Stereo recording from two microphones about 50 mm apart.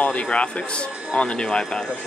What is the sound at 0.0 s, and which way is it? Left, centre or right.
Speech, left.